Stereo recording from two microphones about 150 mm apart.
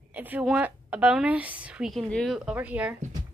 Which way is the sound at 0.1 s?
10° right (ahead or behind).